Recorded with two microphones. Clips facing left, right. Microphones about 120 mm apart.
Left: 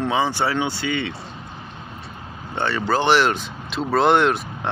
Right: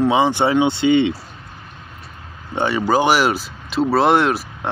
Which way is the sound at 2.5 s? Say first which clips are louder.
Right 4 dB; 10° right (ahead or behind).